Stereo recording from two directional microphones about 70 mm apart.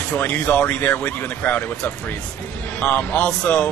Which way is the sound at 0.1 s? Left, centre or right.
Left.